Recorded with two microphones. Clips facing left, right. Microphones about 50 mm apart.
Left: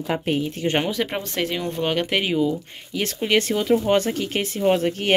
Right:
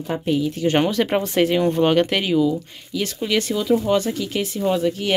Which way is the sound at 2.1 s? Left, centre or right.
Centre.